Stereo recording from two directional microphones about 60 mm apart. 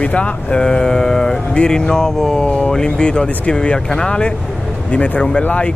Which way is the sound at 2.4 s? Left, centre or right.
Left.